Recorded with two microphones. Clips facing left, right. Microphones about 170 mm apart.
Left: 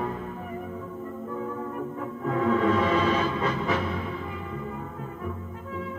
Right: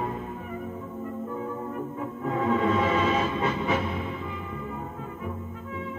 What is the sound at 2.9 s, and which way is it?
Music, 35° left (ahead or behind).